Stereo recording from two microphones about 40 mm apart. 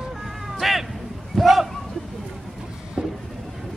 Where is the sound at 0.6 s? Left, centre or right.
Centre.